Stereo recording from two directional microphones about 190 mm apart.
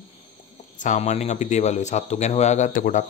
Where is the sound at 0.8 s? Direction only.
40° left (ahead or behind).